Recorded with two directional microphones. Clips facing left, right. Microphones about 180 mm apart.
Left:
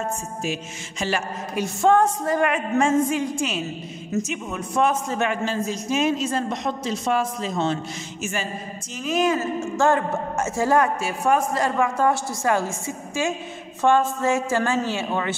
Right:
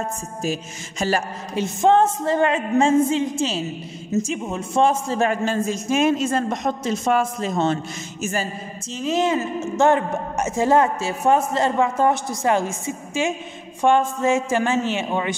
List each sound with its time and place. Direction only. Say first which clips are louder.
0.4 s speech: right 2 dB; 40° right (ahead or behind)
1.5 s a woman's voice: right 2 dB; 20° right (ahead or behind)
5.4 s a woman's voice: right 3 dB; 50° right (ahead or behind)
9.0 s a woman's voice: right 1 dB; 25° right (ahead or behind)